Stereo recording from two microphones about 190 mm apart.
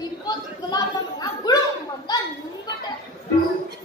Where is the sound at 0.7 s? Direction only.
20° left (ahead or behind).